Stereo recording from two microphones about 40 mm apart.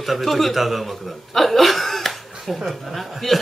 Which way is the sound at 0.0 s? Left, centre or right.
Centre.